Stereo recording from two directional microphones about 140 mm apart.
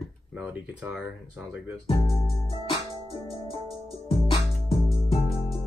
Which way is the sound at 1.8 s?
40° left (ahead or behind).